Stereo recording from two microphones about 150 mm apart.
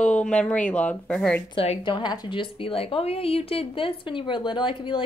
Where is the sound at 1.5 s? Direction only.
35° left (ahead or behind).